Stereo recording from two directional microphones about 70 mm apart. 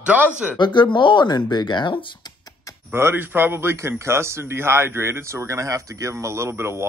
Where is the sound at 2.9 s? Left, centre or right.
Right.